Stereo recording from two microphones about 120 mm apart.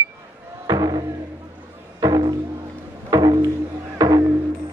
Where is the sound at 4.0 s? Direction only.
35° right (ahead or behind).